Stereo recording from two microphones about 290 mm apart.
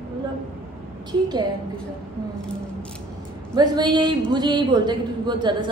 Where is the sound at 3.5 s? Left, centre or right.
Centre.